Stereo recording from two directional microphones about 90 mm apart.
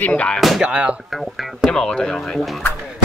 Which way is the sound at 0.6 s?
15° right (ahead or behind).